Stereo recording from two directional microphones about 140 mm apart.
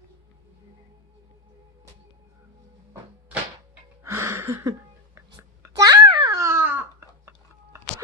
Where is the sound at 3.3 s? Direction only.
15° right (ahead or behind).